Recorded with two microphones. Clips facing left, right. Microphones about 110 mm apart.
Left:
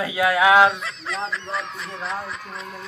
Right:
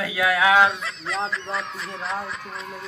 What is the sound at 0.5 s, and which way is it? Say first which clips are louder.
Speech: left 2 dB; centre (ahead or behind).